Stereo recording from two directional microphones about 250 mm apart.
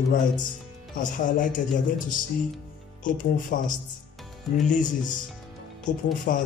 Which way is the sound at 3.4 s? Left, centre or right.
Left.